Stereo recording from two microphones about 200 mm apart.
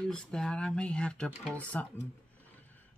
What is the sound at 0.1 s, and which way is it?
Speech, 5° left (ahead or behind).